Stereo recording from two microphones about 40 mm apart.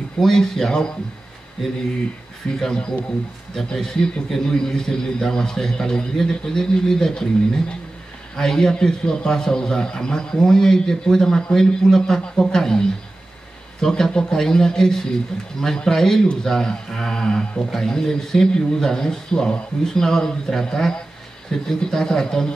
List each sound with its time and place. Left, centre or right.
0.2 s a man's voice: centre
2.6 s speech: left
3.5 s a man's voice: centre